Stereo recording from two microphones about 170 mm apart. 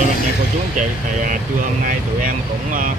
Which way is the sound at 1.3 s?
50° right (ahead or behind).